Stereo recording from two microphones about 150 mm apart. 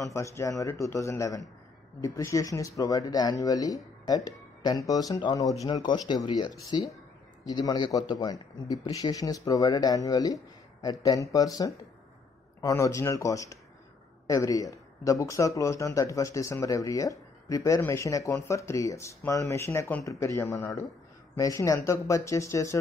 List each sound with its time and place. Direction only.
0.0 s speech: 20° left (ahead or behind)